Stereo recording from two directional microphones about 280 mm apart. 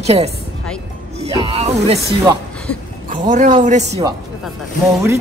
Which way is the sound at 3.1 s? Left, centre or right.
Right.